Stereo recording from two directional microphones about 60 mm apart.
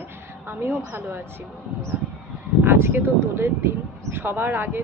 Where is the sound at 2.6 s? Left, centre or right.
Right.